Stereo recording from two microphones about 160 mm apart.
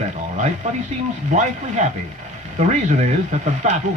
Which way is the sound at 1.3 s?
50° right (ahead or behind).